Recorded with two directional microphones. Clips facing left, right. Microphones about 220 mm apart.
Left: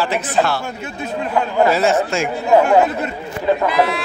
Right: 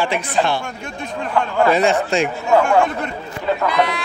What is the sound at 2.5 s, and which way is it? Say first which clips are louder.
Speech: left 3 dB; 20° left (ahead or behind).